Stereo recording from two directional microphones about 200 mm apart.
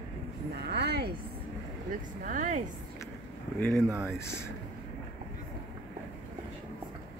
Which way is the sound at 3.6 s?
Centre (ahead or behind).